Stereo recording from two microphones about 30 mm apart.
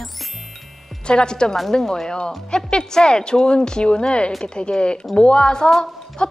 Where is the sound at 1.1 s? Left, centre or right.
Left.